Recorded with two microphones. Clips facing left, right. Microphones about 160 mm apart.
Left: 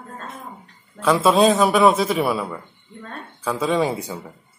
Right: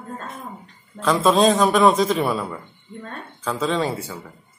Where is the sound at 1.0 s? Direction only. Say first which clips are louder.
Left 1 dB; 5° left (ahead or behind).